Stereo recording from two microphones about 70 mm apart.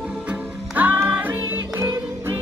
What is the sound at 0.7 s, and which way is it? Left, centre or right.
Music, right.